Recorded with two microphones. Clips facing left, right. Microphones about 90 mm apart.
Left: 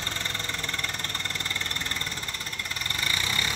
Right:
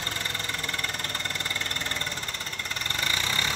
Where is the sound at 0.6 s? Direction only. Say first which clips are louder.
Right 1 dB; 15° right (ahead or behind).